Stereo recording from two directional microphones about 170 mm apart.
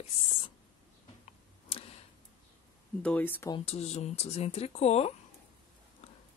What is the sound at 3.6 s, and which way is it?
A woman's voice, 40° left (ahead or behind).